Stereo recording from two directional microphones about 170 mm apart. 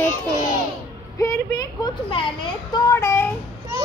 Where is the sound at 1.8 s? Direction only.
30° left (ahead or behind).